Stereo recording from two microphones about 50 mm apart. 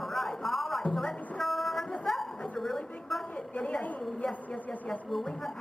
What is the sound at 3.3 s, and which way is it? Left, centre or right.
A woman's voice, left.